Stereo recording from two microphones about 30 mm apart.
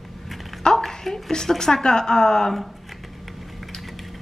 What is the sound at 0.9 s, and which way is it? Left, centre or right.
Speech, centre.